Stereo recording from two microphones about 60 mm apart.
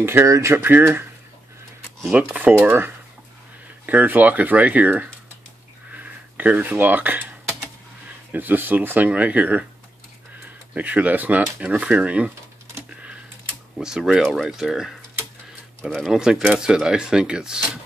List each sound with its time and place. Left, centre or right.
0.0 s speech: right
0.3 s speech: right
0.6 s speech: right
2.3 s speech: right
8.3 s speech: right
10.7 s speech: right
13.7 s speech: centre
16.0 s speech: centre